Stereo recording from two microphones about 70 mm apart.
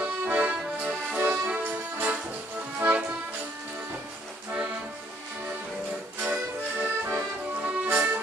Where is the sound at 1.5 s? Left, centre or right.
Centre.